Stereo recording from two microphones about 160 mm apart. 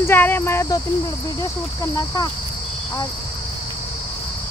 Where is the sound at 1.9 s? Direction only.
25° left (ahead or behind).